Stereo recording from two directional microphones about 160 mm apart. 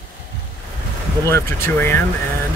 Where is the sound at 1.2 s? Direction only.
15° left (ahead or behind).